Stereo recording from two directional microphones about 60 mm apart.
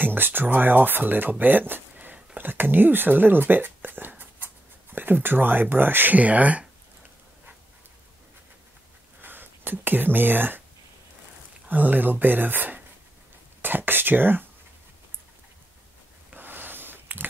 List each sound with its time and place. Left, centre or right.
0.0 s speech: right
9.2 s speech: right
11.6 s speech: right
16.3 s a sound: right